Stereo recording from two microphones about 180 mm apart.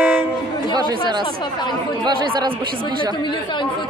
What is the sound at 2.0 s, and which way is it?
Speech, 25° right (ahead or behind).